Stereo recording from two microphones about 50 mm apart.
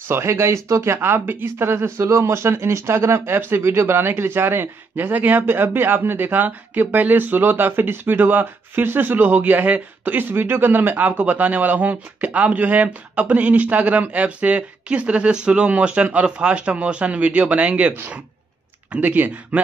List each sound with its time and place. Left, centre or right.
0.1 s speech: right
2.0 s speech: right
5.5 s speech: right
18.9 s speech: right